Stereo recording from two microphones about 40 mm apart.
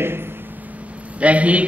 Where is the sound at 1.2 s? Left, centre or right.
Right.